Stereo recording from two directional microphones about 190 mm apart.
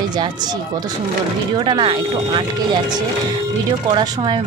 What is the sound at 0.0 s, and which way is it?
Speech, 20° right (ahead or behind).